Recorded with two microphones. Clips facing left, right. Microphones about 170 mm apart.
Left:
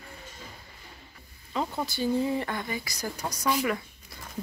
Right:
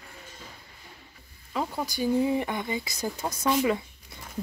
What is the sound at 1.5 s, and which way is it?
Speech, 5° right (ahead or behind).